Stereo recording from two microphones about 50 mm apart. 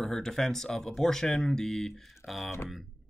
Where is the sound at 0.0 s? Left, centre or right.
Centre.